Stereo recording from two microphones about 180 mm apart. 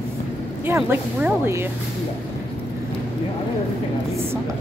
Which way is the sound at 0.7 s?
15° right (ahead or behind).